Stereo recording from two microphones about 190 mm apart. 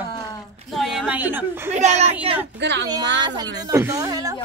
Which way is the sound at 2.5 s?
65° right (ahead or behind).